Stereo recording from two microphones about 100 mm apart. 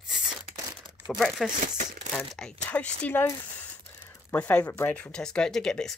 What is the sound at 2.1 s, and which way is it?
Speech, 10° left (ahead or behind).